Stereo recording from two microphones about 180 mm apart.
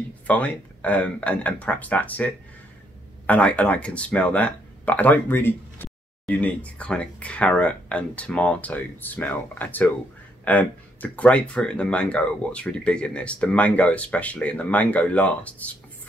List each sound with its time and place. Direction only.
0.3 s speech: 10° left (ahead or behind)